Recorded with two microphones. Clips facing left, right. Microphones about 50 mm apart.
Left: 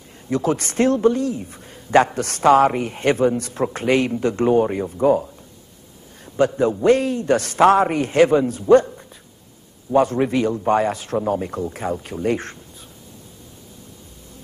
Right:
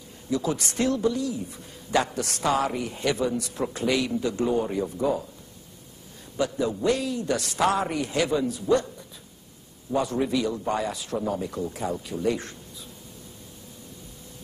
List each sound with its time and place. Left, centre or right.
0.3 s a man's voice: left
6.3 s a man's voice: left